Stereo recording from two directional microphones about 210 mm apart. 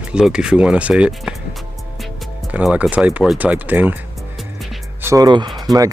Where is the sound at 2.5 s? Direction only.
5° right (ahead or behind).